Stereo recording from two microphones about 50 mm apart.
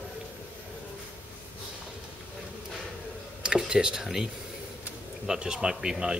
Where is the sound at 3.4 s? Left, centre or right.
Centre.